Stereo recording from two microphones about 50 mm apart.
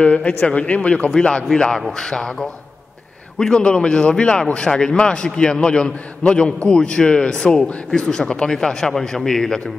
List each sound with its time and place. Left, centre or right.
0.0 s speech: left
1.5 s speech: centre